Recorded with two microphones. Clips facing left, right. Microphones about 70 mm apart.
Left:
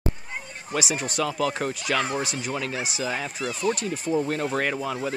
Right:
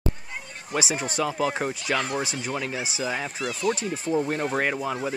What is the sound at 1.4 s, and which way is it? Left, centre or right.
Speech, centre.